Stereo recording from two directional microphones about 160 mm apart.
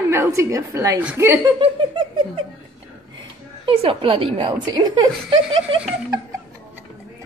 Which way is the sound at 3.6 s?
35° right (ahead or behind).